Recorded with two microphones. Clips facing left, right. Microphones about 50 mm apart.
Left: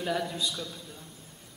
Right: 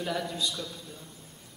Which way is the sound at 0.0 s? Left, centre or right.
Centre.